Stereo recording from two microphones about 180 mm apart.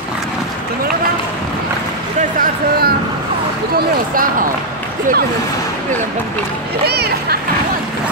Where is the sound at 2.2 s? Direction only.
55° right (ahead or behind).